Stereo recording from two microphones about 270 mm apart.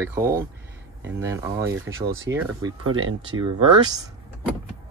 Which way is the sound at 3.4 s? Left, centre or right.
Centre.